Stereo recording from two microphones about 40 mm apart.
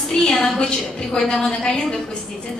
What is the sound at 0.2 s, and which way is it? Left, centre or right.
A woman's voice, centre.